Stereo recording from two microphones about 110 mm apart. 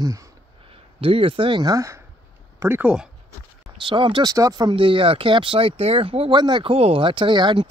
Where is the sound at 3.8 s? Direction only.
45° right (ahead or behind).